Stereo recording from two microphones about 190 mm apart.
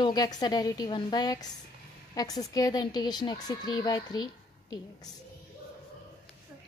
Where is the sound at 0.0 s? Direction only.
20° left (ahead or behind).